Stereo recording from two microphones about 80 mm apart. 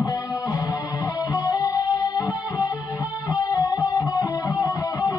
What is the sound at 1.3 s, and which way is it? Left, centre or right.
Music, left.